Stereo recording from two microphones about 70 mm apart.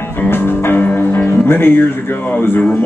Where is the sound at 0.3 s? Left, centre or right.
Left.